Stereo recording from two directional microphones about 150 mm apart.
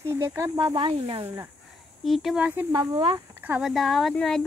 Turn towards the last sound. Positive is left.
turn(degrees=5)  # may be behind; listen again after turning